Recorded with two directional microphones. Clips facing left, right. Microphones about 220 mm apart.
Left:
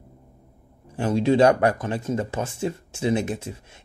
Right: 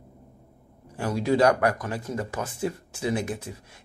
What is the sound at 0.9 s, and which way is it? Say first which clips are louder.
Speech: left 4 dB; 25° left (ahead or behind).